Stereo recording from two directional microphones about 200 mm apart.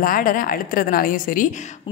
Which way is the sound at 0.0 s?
45° left (ahead or behind).